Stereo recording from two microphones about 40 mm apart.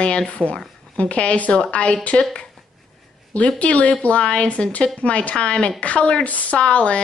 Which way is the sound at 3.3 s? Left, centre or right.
Left.